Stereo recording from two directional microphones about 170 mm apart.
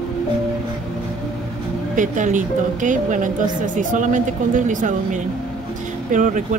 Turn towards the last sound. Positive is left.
turn(degrees=-50)  # may be behind; listen again after turning